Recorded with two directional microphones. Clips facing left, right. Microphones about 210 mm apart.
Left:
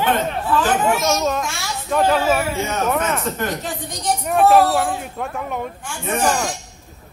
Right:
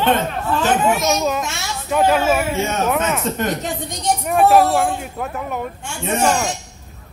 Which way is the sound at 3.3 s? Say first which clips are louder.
Right 3 dB; 25° right (ahead or behind).